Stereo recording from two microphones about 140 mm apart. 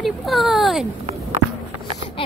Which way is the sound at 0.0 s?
Centre (ahead or behind).